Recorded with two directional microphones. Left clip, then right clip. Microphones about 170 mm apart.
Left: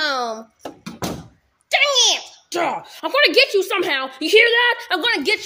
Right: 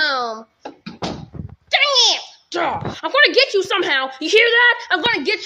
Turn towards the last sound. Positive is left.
turn(degrees=25)  # may be behind; listen again after turning